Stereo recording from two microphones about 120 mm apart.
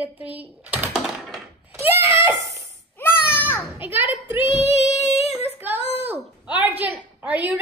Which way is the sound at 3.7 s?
15° right (ahead or behind).